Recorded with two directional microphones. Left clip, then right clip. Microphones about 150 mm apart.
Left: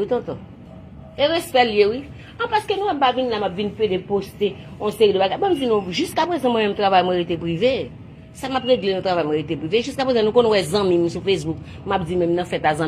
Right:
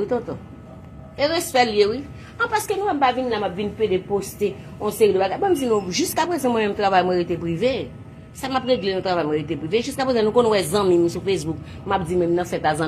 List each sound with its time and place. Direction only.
0.0 s a woman's voice: 40° left (ahead or behind)